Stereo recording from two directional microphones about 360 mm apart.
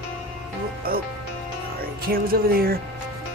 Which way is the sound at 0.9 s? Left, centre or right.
Right.